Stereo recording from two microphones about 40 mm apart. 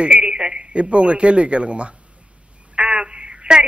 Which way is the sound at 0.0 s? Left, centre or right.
Right.